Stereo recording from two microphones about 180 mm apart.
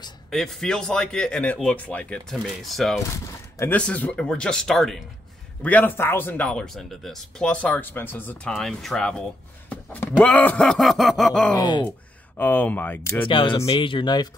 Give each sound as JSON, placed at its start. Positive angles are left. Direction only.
{"t": 0.3, "sound": "speech", "side_deg": 0}
{"t": 10.2, "sound": "speech", "side_deg": 10}
{"t": 11.5, "sound": "speech", "side_deg": 25}
{"t": 12.4, "sound": "speech", "side_deg": 10}
{"t": 13.2, "sound": "speech", "side_deg": 30}